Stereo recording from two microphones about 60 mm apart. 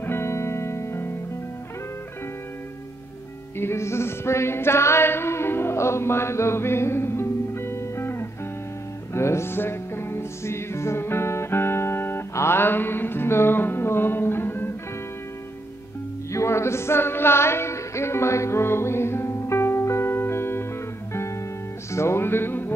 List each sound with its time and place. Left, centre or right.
0.0 s music: left
3.5 s music: left
16.3 s music: left